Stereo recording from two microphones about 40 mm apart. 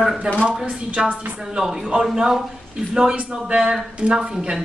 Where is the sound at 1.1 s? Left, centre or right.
Right.